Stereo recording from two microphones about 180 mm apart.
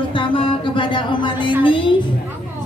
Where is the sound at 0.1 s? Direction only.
30° left (ahead or behind).